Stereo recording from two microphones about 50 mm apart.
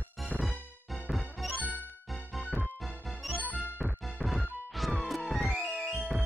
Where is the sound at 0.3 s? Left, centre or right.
Left.